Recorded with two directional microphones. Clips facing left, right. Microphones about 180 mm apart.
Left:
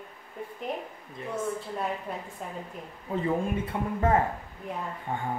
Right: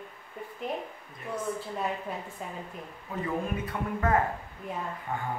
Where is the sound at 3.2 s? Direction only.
25° left (ahead or behind).